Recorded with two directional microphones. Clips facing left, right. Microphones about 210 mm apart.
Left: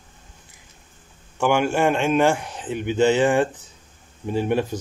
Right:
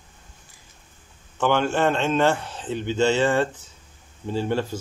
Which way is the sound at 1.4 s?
10° left (ahead or behind).